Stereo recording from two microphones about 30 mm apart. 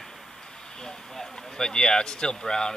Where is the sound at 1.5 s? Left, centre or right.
Left.